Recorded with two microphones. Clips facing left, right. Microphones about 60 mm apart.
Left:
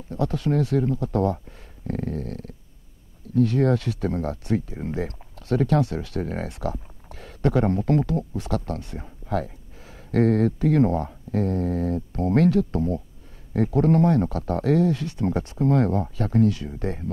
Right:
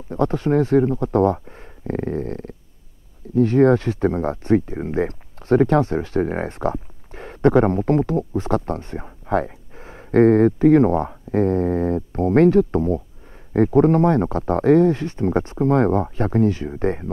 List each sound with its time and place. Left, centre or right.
0.1 s speech: right